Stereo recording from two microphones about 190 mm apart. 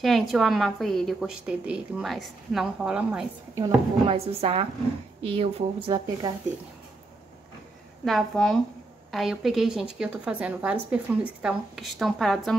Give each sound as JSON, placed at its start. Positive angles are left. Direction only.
{"t": 0.0, "sound": "a woman's voice", "side_deg": 0}
{"t": 3.6, "sound": "a woman's voice", "side_deg": -30}
{"t": 8.0, "sound": "a woman's voice", "side_deg": 0}